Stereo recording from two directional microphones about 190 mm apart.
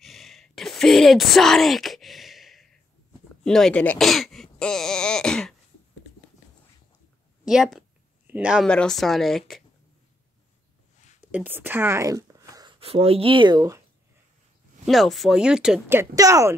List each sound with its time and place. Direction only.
0.0 s a sound: centre (ahead or behind)
3.4 s speech: 5° left (ahead or behind)
7.4 s speech: centre (ahead or behind)
8.6 s speech: 5° left (ahead or behind)
11.1 s speech: 10° right (ahead or behind)
14.9 s speech: centre (ahead or behind); by 16.5 s 15° right (ahead or behind)